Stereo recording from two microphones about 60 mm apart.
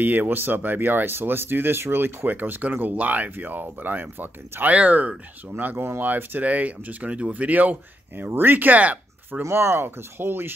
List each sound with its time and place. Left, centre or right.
0.0 s speech: right
8.3 s speech: right
9.4 s speech: right